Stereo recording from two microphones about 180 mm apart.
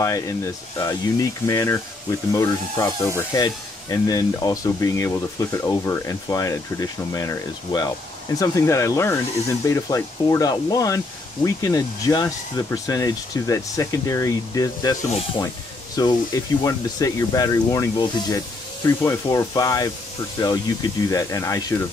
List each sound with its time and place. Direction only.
0.0 s speech: 15° left (ahead or behind)
16.0 s speech: 20° left (ahead or behind)